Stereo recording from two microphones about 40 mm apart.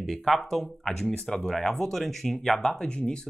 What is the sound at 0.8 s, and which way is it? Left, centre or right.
Speech, centre.